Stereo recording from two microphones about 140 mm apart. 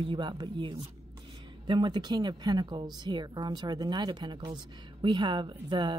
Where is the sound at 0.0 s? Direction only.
35° right (ahead or behind).